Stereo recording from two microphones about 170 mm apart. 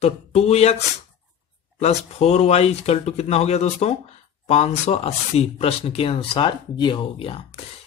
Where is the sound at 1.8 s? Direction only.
40° left (ahead or behind).